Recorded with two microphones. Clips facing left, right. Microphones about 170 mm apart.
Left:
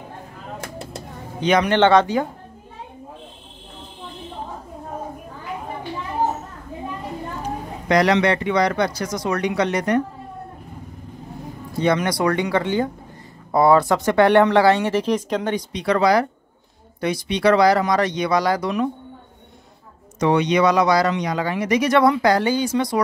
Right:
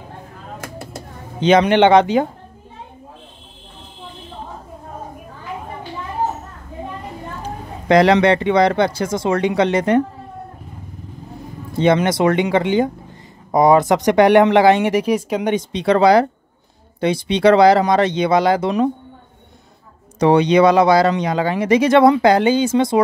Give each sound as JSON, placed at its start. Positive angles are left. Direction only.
{"t": 1.4, "sound": "speech", "side_deg": -25}
{"t": 7.4, "sound": "speech", "side_deg": -25}
{"t": 11.8, "sound": "speech", "side_deg": -25}
{"t": 15.5, "sound": "speech", "side_deg": -25}
{"t": 20.2, "sound": "speech", "side_deg": -30}